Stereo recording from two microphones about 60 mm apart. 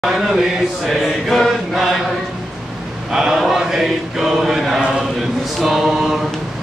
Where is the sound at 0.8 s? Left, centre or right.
Centre.